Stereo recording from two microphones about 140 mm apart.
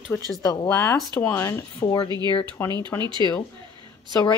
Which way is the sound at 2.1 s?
30° right (ahead or behind).